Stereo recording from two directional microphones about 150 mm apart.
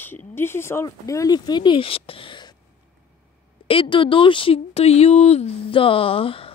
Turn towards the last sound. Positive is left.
turn(degrees=35)  # may be behind; listen again after turning